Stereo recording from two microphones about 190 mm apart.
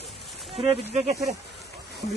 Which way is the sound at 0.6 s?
35° right (ahead or behind).